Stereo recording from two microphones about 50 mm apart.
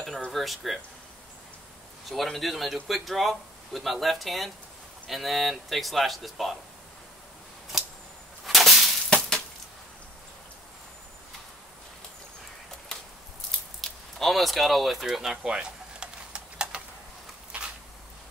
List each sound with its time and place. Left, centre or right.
0.3 s a man's voice: centre
2.0 s a man's voice: centre
7.7 s arrow: centre
8.5 s whip: centre
13.5 s squish: centre
17.5 s a sound: right